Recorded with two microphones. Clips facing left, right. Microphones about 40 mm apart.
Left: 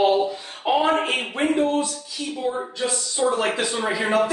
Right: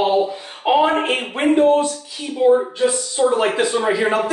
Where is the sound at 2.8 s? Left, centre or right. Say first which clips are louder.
Right 6 dB; centre.